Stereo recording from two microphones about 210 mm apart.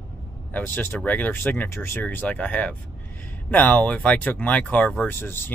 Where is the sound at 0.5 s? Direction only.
10° left (ahead or behind).